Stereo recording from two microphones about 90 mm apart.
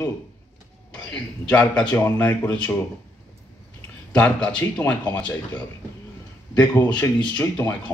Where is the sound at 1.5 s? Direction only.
10° left (ahead or behind).